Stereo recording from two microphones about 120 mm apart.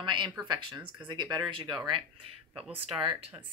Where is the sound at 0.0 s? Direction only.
45° right (ahead or behind).